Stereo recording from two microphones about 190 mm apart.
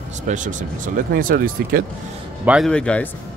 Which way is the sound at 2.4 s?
5° right (ahead or behind).